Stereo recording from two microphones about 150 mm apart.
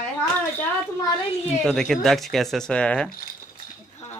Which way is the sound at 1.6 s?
5° left (ahead or behind).